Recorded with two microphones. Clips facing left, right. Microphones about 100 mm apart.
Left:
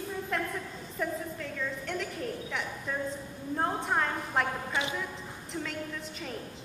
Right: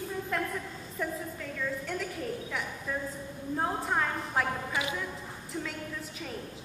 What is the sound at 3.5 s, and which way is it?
Speech, centre (ahead or behind).